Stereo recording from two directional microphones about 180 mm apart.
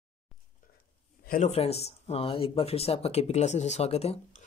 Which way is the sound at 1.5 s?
35° left (ahead or behind).